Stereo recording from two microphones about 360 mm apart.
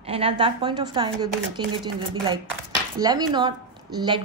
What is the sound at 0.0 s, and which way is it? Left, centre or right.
Speech, centre.